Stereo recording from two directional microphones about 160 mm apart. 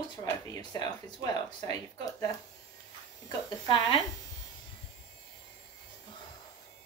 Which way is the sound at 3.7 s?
35° left (ahead or behind).